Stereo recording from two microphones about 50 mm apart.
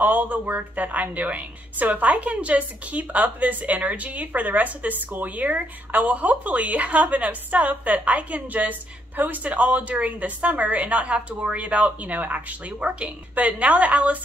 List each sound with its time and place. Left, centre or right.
0.0 s a woman's voice: right